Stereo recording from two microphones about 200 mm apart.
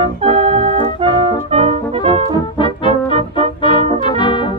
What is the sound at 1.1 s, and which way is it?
Music, 25° right (ahead or behind).